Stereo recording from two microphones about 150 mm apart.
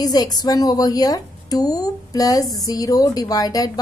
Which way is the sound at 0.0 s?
25° left (ahead or behind).